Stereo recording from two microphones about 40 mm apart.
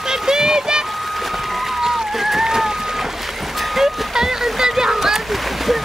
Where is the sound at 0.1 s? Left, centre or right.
Centre.